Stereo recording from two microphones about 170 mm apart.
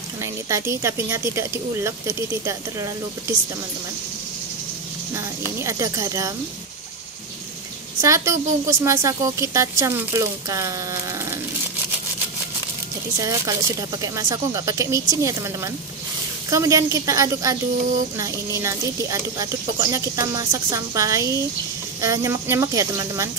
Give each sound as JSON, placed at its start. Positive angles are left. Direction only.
{"t": 0.2, "sound": "a woman's voice", "side_deg": -15}
{"t": 5.6, "sound": "speech", "side_deg": -20}
{"t": 8.0, "sound": "a woman's voice", "side_deg": -15}
{"t": 13.2, "sound": "speech", "side_deg": -20}